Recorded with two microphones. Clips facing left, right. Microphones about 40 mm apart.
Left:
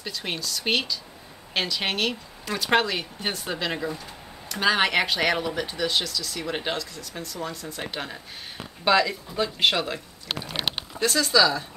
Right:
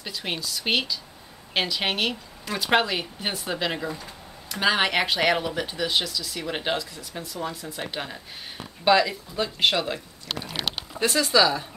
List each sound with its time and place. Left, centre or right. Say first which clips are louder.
0.0 s speech: even; centre
11.0 s speech: even; centre